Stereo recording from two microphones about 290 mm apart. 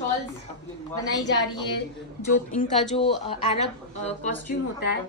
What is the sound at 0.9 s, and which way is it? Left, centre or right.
Speech, centre.